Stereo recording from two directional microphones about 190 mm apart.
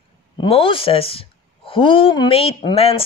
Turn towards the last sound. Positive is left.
turn(degrees=30)  # may be behind; listen again after turning